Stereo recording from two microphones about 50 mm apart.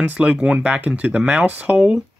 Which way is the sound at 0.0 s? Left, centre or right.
Right.